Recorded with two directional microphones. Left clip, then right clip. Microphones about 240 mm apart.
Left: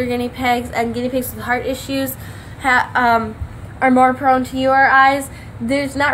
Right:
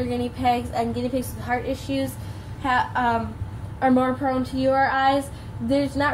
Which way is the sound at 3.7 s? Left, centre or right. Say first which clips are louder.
Left 8 dB; left.